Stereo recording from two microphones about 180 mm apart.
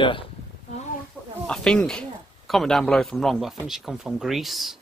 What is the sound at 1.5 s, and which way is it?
A man's voice, 5° left (ahead or behind).